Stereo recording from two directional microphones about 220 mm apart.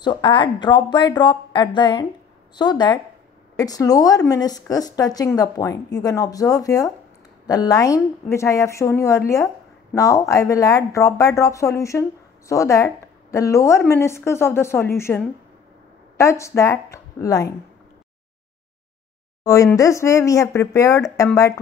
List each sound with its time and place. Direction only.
0.0 s speech: 20° left (ahead or behind)
19.4 s speech: 15° left (ahead or behind)